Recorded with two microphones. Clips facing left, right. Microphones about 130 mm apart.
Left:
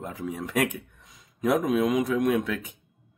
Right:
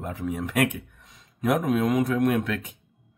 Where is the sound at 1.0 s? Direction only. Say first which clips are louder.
Left 1 dB; 15° left (ahead or behind).